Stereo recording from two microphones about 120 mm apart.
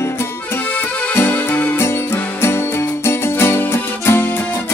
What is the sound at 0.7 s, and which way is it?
Music, 15° left (ahead or behind).